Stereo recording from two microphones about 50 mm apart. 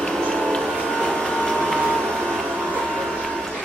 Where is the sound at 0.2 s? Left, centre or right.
Centre.